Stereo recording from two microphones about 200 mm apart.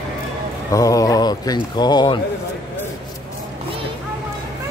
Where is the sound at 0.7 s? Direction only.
15° left (ahead or behind).